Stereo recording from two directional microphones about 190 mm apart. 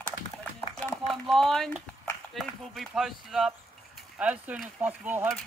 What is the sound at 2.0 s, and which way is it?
Speech, 5° left (ahead or behind).